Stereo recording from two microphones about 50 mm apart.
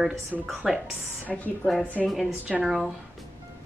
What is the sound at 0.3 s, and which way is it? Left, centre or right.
Speech, centre.